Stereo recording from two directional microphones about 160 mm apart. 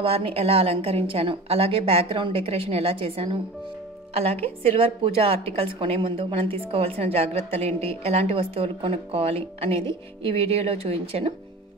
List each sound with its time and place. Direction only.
0.0 s a woman's voice: 35° right (ahead or behind)